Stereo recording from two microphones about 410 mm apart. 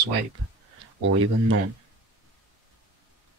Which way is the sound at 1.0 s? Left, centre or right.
Right.